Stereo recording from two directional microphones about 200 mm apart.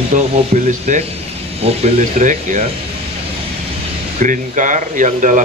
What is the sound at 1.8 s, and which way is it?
Speech, 40° right (ahead or behind).